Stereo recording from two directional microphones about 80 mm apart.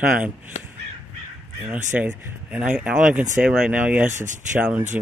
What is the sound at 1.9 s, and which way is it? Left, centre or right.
Speech, centre.